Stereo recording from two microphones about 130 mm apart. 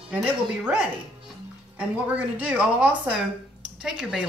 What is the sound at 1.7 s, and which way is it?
A woman's voice, 10° right (ahead or behind).